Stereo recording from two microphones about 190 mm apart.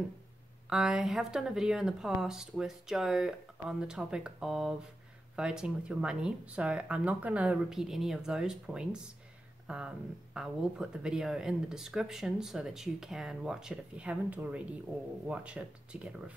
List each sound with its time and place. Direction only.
0.7 s speech: 5° right (ahead or behind)